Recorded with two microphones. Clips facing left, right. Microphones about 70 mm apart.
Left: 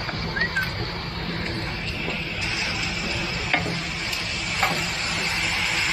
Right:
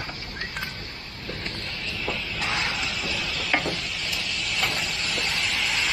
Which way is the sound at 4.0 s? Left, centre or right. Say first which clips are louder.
Left 1 dB; left.